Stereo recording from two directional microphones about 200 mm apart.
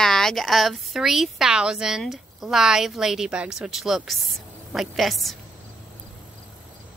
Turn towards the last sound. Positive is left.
turn(degrees=0)  # may be behind; listen again after turning